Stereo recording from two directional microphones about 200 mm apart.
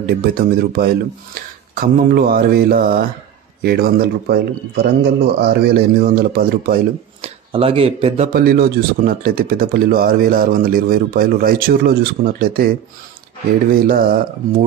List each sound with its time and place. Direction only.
0.2 s speech: 50° right (ahead or behind)
7.2 s speech: 30° right (ahead or behind)
8.3 s speech: 50° right (ahead or behind)
13.7 s speech: 45° right (ahead or behind)